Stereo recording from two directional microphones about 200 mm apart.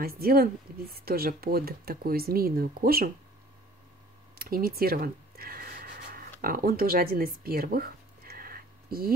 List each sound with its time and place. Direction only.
0.0 s speech: 50° right (ahead or behind)
4.4 s a sound: 45° right (ahead or behind)
6.4 s speech: 50° right (ahead or behind)